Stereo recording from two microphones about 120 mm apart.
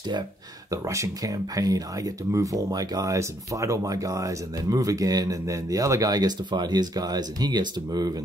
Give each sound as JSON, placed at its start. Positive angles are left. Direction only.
{"t": 0.7, "sound": "speech", "side_deg": -25}